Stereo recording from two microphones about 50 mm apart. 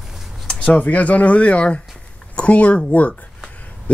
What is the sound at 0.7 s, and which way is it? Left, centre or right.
Speech, left.